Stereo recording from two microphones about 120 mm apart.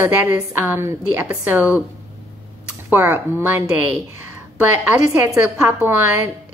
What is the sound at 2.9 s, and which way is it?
Speech, 15° right (ahead or behind).